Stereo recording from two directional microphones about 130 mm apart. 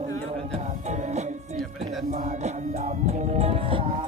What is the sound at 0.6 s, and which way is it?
Music, 65° right (ahead or behind).